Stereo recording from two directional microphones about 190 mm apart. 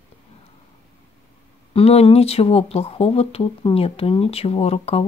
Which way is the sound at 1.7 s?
30° left (ahead or behind).